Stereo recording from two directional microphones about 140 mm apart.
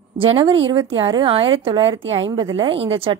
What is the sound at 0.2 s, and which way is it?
Speech, 40° right (ahead or behind).